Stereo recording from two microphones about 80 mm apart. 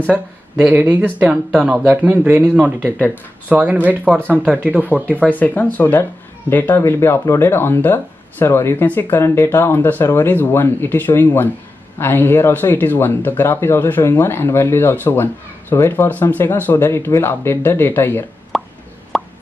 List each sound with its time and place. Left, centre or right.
0.0 s speech: centre
5.2 s speech: left
18.5 s plop: centre